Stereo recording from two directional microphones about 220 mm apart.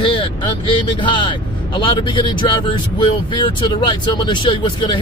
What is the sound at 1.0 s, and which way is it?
Speech, 20° left (ahead or behind).